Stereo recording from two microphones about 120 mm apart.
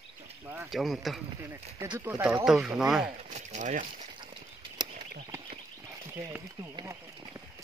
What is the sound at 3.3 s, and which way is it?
Speech, 85° right.